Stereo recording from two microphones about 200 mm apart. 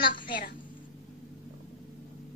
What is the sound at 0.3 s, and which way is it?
Speech, 45° left (ahead or behind).